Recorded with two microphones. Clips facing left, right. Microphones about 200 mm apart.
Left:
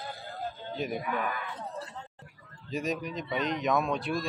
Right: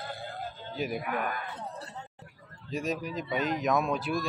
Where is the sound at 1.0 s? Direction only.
50° right (ahead or behind).